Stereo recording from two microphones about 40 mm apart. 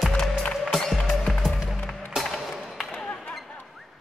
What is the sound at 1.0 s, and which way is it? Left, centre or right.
Music, centre.